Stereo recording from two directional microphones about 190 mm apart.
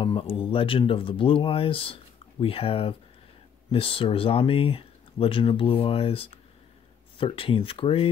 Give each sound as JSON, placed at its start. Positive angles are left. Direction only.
{"t": 0.0, "sound": "speech", "side_deg": 30}